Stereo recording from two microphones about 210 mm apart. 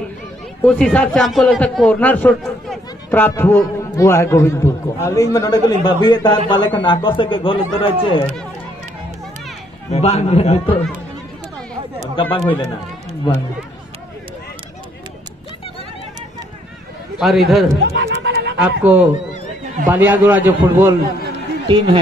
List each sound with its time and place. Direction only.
0.7 s a man's voice: 5° left (ahead or behind); by 8.3 s 25° left (ahead or behind)
9.8 s a man's voice: 30° left (ahead or behind)
12.2 s a man's voice: 25° left (ahead or behind)
17.2 s a man's voice: centre (ahead or behind)
17.9 s a sound: 50° right (ahead or behind)
18.8 s a man's voice: 5° right (ahead or behind)
21.6 s speech: 20° right (ahead or behind)